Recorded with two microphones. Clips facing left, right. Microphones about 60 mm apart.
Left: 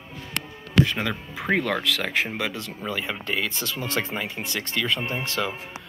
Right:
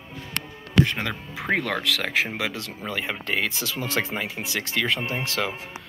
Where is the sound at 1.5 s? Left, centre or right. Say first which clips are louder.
Left 1 dB; right.